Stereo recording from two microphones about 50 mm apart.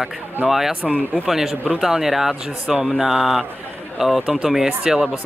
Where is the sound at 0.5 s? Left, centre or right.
Centre.